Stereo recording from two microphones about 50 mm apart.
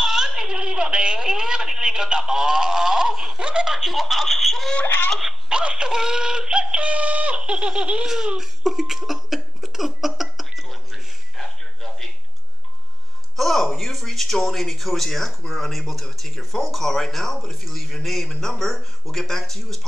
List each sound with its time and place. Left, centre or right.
0.0 s a woman's voice: centre
3.7 s speech: centre
4.8 s speech: left
5.5 s synthetic singing: centre
8.4 s cough: centre
13.4 s speech: centre